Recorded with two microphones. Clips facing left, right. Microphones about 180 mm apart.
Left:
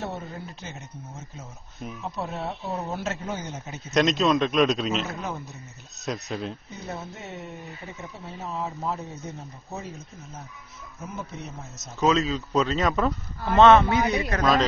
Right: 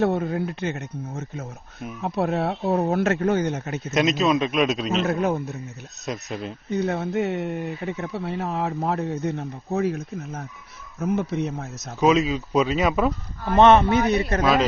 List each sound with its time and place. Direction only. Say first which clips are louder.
0.0 s speech: right 12 dB; 60° right (ahead or behind)
3.9 s a man's voice: right 1 dB; 5° right (ahead or behind)
5.0 s speech: right 10 dB; 60° right (ahead or behind)
6.0 s a man's voice: even; centre (ahead or behind)
6.7 s speech: right 12 dB; 70° right (ahead or behind)
12.0 s speech: right 3 dB; 10° right (ahead or behind)
13.8 s speech: right 4 dB; 15° left (ahead or behind)